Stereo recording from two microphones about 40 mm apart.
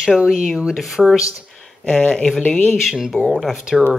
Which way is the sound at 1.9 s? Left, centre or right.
Left.